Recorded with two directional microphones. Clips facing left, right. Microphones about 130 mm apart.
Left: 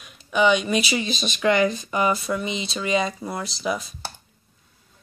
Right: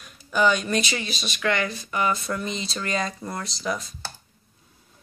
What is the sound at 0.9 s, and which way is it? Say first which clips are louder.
Speech: left 5 dB; 20° left (ahead or behind).